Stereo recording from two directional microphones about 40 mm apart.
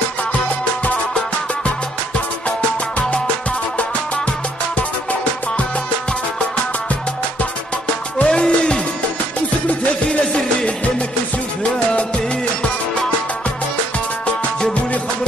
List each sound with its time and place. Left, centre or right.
8.2 s music: left